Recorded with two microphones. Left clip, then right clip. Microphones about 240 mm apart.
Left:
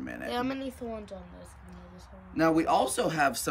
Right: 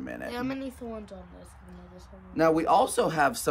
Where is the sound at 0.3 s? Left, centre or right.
Centre.